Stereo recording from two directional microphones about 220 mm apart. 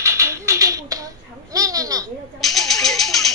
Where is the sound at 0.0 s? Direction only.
15° right (ahead or behind).